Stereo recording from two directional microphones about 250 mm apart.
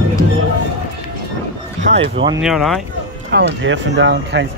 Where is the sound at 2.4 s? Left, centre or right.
Centre.